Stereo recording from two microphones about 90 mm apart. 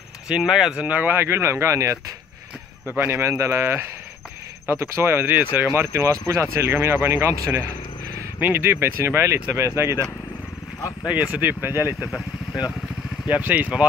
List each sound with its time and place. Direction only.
0.3 s speech: 5° right (ahead or behind); by 10.0 s 30° right (ahead or behind)
11.3 s speech: 25° right (ahead or behind)
13.3 s speech: 20° right (ahead or behind)